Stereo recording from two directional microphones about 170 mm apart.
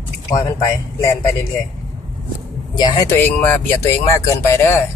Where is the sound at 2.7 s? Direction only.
25° left (ahead or behind).